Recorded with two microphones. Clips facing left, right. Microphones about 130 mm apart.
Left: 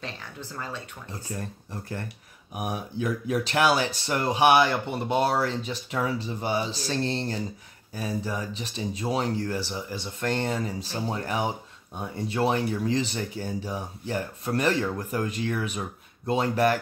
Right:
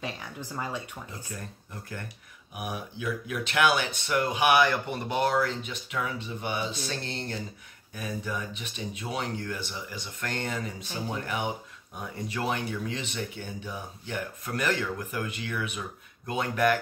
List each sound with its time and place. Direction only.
0.0 s speech: 15° right (ahead or behind)
1.3 s speech: 35° left (ahead or behind)